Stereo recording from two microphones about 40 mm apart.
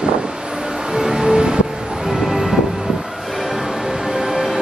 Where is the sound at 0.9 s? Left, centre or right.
Centre.